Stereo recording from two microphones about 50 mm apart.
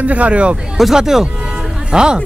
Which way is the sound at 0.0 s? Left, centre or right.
Right.